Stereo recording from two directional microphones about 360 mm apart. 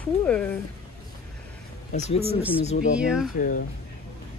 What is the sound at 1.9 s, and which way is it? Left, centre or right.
Speech, centre.